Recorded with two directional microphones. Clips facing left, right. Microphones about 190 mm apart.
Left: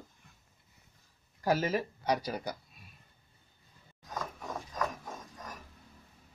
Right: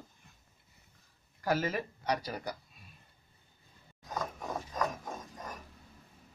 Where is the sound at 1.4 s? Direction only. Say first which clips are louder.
Left 2 dB; 25° left (ahead or behind).